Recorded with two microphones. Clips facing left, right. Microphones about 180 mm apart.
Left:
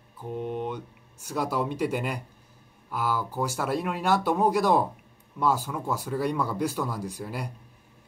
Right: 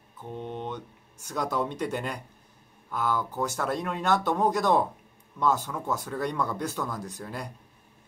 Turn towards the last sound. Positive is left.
turn(degrees=10)  # may be behind; listen again after turning